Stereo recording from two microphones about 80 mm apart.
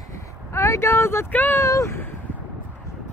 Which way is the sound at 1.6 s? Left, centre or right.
Left.